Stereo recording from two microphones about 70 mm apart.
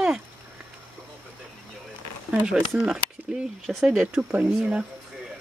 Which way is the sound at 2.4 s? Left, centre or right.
Centre.